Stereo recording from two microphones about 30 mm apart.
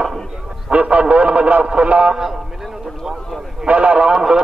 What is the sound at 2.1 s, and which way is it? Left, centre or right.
Speech, centre.